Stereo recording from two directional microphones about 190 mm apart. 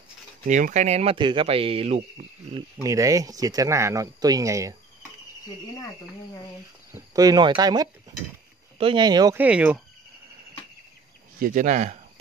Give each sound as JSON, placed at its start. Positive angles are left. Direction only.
{"t": 0.5, "sound": "speech", "side_deg": -40}
{"t": 2.8, "sound": "speech", "side_deg": -20}
{"t": 6.9, "sound": "speech", "side_deg": -20}
{"t": 9.4, "sound": "speech", "side_deg": -5}
{"t": 11.3, "sound": "speech", "side_deg": -45}